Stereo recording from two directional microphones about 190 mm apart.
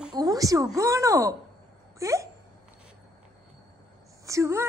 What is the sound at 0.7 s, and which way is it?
Speech, 15° right (ahead or behind).